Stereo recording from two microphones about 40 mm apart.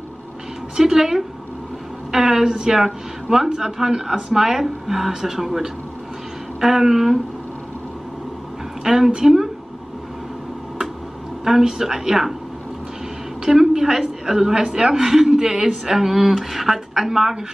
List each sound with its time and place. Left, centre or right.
0.7 s a woman's voice: centre
8.8 s a woman's voice: centre
11.4 s a woman's voice: centre
13.5 s a woman's voice: centre